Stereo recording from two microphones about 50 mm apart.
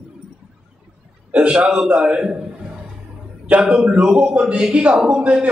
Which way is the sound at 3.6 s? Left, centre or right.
Centre.